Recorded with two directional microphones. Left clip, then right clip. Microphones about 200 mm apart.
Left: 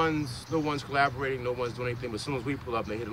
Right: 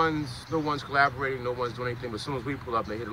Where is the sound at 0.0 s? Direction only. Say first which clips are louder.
Right 2 dB; 10° left (ahead or behind).